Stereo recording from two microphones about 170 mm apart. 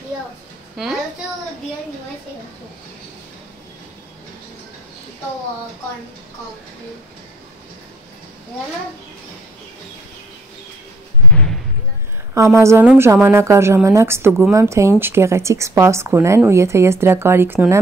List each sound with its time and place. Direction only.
12.4 s speech: 15° right (ahead or behind)